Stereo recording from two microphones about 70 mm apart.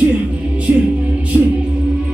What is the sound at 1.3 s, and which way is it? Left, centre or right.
Music, centre.